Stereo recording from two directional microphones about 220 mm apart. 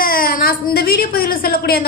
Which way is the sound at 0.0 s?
40° left (ahead or behind).